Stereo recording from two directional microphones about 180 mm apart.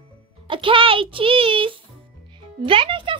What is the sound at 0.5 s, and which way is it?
A child's voice, 30° right (ahead or behind).